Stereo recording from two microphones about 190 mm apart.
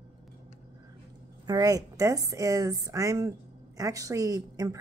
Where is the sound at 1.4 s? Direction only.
20° right (ahead or behind).